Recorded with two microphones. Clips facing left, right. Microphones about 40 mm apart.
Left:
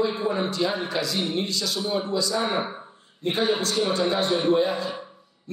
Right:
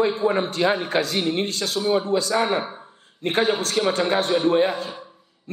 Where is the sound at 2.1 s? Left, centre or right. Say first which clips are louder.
Right 4 dB; right.